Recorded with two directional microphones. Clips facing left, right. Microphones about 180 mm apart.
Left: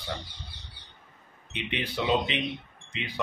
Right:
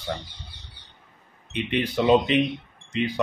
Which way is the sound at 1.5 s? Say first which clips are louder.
Right 8 dB; 45° right (ahead or behind).